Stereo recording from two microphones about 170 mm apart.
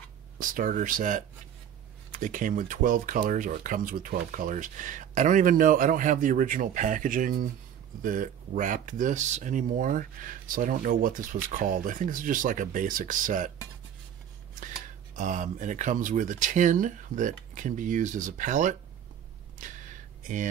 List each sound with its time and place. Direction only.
0.4 s speech: 55° right (ahead or behind)
15.1 s speech: 50° right (ahead or behind)
19.6 s a sound: 50° right (ahead or behind)